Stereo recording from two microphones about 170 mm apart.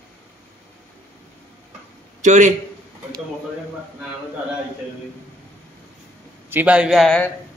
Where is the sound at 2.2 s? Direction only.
45° right (ahead or behind).